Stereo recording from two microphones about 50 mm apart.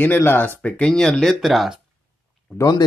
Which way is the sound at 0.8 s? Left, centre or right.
Centre.